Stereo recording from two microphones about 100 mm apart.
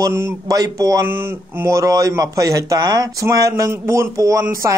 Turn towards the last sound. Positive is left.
turn(degrees=-35)  # may be behind; listen again after turning